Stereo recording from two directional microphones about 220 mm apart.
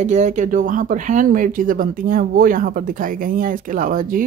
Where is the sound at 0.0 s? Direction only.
35° right (ahead or behind).